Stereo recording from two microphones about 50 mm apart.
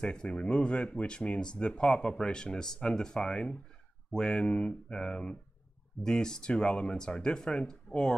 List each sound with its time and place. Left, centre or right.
0.0 s speech: centre